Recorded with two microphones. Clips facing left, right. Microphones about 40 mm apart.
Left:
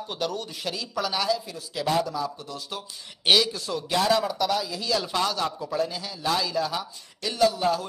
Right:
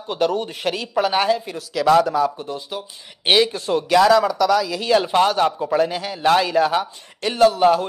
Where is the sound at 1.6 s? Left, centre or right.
Right.